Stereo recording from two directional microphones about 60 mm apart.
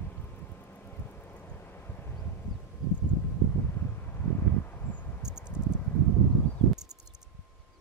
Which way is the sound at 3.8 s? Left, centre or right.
Left.